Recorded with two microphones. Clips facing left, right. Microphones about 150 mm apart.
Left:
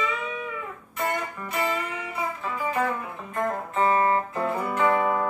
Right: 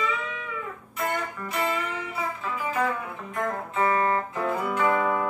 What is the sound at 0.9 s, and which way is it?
Music, centre (ahead or behind).